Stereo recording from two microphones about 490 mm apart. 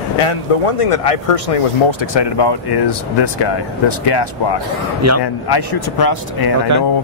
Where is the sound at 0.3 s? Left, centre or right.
Left.